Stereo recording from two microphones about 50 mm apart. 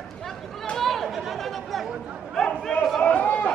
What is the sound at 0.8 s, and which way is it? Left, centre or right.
Chatter, centre.